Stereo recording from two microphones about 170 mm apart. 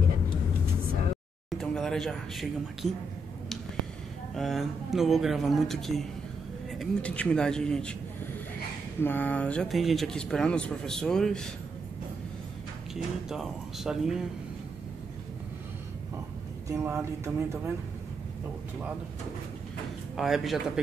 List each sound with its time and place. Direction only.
1.6 s speech: 5° left (ahead or behind)
4.4 s speech: centre (ahead or behind)
9.0 s speech: 10° left (ahead or behind)
12.9 s speech: centre (ahead or behind)
16.6 s speech: 15° right (ahead or behind)
20.2 s speech: centre (ahead or behind)